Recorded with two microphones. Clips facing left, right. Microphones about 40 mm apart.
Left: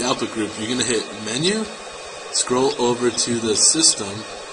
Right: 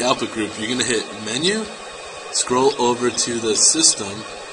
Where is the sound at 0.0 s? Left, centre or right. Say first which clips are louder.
Right 2 dB; centre.